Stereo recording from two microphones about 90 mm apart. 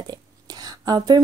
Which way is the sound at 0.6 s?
45° right (ahead or behind).